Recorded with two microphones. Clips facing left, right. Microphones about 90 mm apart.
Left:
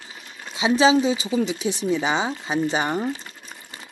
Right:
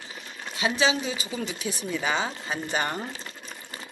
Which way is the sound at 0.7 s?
30° left (ahead or behind).